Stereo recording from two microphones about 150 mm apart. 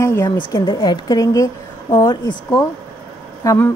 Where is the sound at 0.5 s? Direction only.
25° left (ahead or behind).